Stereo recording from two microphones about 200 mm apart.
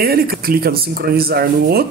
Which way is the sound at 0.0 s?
50° right (ahead or behind).